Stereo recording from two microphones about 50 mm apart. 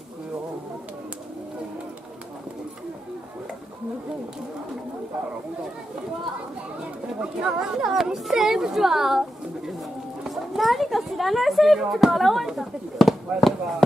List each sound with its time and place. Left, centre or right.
7.2 s speech: centre
10.2 s speech: centre